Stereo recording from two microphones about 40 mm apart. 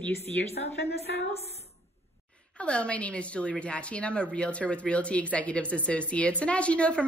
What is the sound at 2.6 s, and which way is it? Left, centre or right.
A woman's voice, left.